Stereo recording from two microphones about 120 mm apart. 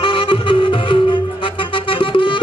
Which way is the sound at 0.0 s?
45° left (ahead or behind).